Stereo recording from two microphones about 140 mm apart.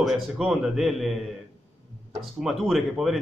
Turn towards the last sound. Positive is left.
turn(degrees=0)  # may be behind; listen again after turning